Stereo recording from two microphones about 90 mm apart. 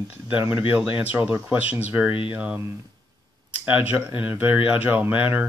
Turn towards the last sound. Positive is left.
turn(degrees=-15)  # may be behind; listen again after turning